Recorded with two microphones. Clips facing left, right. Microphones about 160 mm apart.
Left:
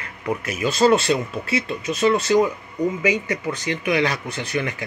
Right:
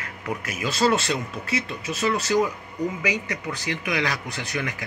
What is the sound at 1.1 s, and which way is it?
Speech, 10° left (ahead or behind).